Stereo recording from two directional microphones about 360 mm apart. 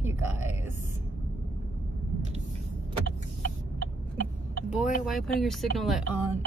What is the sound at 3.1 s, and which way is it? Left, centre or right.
Vehicle, right.